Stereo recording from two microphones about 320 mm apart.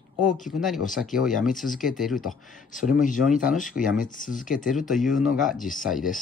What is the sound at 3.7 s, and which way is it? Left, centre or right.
Speech, left.